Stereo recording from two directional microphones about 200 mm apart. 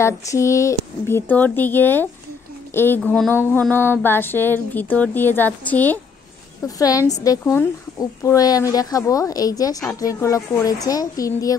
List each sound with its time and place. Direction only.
0.0 s a woman's voice: 15° left (ahead or behind)